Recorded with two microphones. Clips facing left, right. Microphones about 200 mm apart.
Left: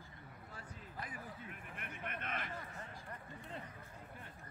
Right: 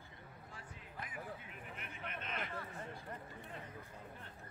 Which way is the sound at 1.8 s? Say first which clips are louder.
Left 3 dB; 55° left (ahead or behind).